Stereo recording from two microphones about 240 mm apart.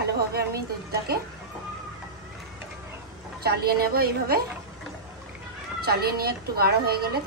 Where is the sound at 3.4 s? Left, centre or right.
Right.